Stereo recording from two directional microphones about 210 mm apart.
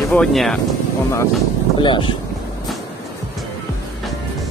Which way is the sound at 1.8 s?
25° left (ahead or behind).